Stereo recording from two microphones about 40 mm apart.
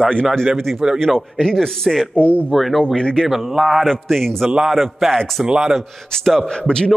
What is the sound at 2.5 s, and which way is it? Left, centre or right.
Speech, centre.